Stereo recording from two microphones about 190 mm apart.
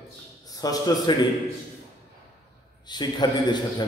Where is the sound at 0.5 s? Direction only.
20° left (ahead or behind).